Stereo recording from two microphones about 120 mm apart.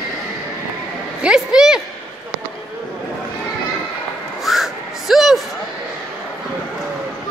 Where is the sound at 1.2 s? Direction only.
5° right (ahead or behind).